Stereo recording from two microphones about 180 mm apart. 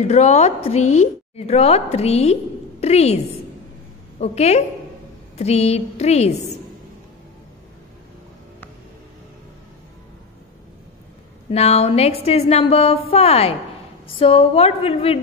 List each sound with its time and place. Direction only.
0.0 s a woman's voice: 40° left (ahead or behind)
4.2 s a woman's voice: 35° left (ahead or behind)
11.5 s a woman's voice: 35° left (ahead or behind)